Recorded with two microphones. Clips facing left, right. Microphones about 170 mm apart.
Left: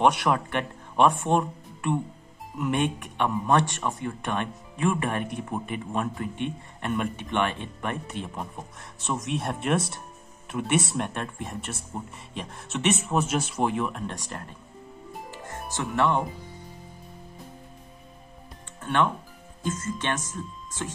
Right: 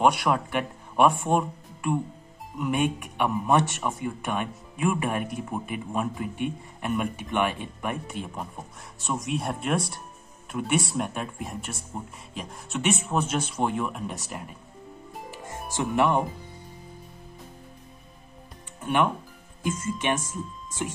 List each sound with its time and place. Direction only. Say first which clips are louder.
0.0 s speech: even; centre (ahead or behind); by 16.2 s 20° right (ahead or behind)
18.8 s speech: right 1 dB; 10° right (ahead or behind)